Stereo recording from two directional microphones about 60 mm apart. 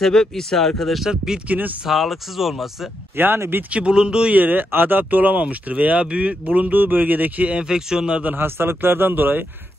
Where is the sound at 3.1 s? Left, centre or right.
Right.